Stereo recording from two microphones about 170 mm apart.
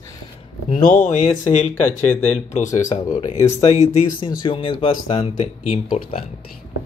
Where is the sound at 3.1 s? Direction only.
45° left (ahead or behind).